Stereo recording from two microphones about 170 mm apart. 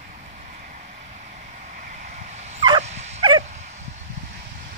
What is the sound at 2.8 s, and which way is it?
Dog, 40° right (ahead or behind).